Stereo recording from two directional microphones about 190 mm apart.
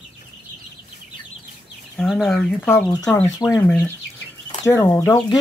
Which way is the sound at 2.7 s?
15° left (ahead or behind).